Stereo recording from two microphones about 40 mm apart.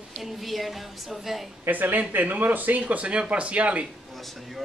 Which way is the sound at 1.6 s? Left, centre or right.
Right.